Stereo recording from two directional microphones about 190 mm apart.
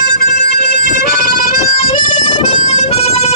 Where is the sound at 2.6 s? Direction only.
35° left (ahead or behind).